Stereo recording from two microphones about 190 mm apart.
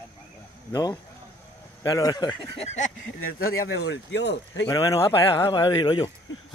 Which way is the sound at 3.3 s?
55° left (ahead or behind).